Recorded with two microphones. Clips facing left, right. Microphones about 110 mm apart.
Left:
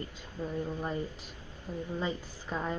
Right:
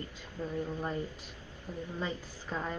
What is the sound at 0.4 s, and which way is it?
Speech, 15° left (ahead or behind).